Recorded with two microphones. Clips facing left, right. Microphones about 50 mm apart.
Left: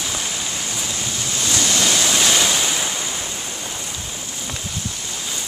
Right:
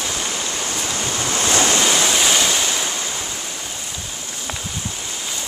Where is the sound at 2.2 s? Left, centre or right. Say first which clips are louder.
Even; centre.